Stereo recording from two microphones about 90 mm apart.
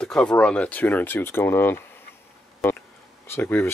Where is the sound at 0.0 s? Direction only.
10° left (ahead or behind).